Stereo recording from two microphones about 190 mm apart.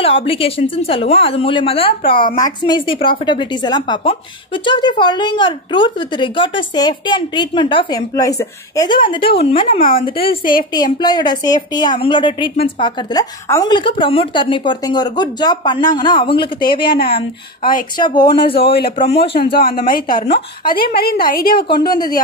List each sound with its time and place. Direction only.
0.0 s a woman's voice: 30° left (ahead or behind)
2.1 s a woman's voice: 45° left (ahead or behind)
2.4 s a woman's voice: 20° left (ahead or behind)
9.7 s a woman's voice: 45° left (ahead or behind)
10.0 s a woman's voice: 30° left (ahead or behind)
19.5 s a woman's voice: 50° left (ahead or behind)